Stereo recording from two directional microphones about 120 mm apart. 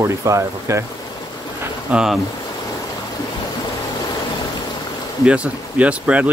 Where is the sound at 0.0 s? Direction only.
25° right (ahead or behind).